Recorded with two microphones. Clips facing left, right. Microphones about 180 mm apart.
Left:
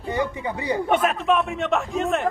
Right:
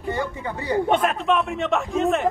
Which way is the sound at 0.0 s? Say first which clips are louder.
Left 1 dB; 15° left (ahead or behind).